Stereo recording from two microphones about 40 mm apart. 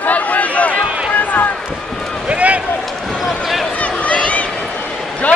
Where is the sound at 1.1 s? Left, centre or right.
Left.